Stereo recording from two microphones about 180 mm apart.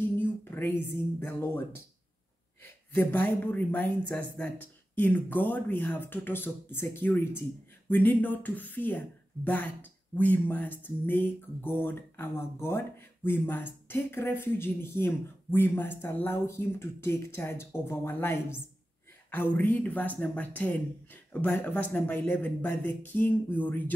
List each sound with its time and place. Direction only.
0.2 s speech: 10° left (ahead or behind)
2.6 s speech: 10° left (ahead or behind)